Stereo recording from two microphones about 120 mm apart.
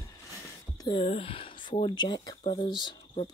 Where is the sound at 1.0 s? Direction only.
50° left (ahead or behind).